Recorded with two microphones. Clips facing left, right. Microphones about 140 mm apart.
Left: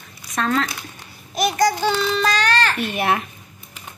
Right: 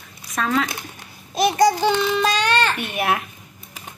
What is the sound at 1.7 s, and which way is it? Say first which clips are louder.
Child singing: right 1 dB; 15° right (ahead or behind).